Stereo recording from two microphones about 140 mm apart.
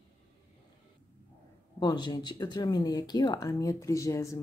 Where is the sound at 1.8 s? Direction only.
30° left (ahead or behind).